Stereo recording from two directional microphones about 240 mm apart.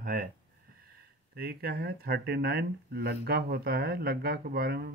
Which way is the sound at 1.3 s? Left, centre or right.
Right.